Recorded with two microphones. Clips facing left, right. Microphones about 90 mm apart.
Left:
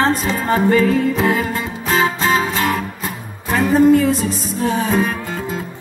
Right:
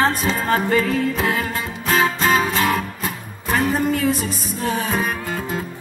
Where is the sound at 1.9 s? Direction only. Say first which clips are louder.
Left 1 dB; centre (ahead or behind).